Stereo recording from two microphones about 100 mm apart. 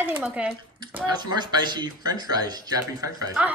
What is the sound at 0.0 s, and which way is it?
Speech, 15° right (ahead or behind).